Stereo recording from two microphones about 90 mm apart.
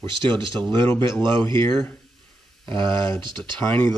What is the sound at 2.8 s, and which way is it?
Speech, 65° right (ahead or behind).